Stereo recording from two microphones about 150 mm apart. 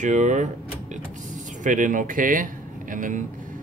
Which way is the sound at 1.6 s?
60° right (ahead or behind).